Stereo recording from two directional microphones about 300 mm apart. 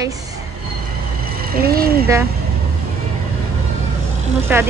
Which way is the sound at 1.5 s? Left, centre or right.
Right.